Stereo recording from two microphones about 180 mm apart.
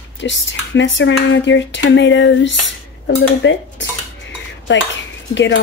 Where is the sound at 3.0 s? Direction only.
80° left.